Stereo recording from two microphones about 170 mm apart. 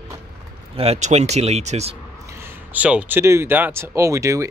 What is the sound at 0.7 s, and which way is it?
Speech, 35° right (ahead or behind).